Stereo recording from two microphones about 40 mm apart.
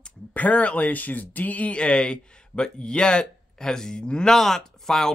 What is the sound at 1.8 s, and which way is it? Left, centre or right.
Speech, left.